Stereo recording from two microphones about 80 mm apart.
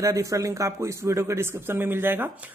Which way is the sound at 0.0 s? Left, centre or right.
Right.